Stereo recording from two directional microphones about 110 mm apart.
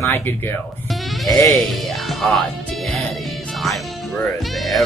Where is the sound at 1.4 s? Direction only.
Centre (ahead or behind).